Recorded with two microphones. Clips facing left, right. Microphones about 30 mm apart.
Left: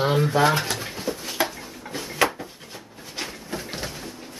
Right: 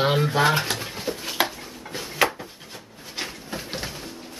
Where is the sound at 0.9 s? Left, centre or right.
Centre.